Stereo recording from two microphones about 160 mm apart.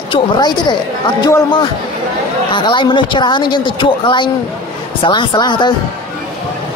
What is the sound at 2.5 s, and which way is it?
Speech, 30° left (ahead or behind).